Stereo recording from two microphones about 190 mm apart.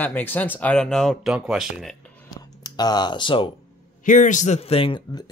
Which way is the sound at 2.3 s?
20° left (ahead or behind).